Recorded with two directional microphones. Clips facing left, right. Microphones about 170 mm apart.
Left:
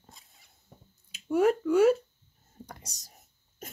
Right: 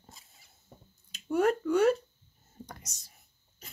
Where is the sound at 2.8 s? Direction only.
35° left (ahead or behind).